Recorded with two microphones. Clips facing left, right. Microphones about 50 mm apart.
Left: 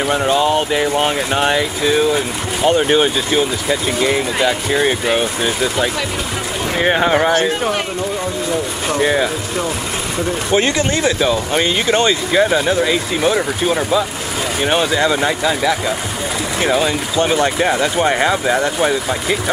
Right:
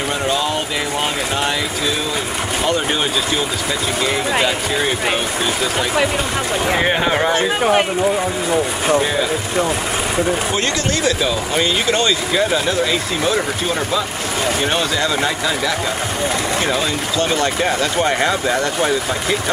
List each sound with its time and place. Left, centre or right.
0.1 s speech: centre
6.8 s speech: centre
7.4 s speech: centre
9.0 s speech: centre
10.5 s speech: left